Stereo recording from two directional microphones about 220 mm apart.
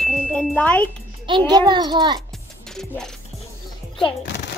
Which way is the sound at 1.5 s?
20° right (ahead or behind).